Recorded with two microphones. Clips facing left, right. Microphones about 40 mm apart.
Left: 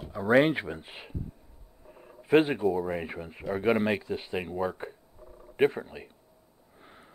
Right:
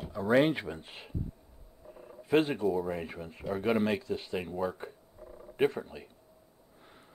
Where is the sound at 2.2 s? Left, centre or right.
Left.